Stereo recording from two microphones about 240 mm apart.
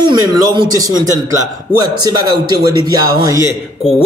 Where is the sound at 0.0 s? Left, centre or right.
Centre.